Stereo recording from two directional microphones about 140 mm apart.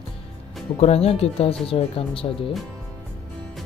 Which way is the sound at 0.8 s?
45° left (ahead or behind).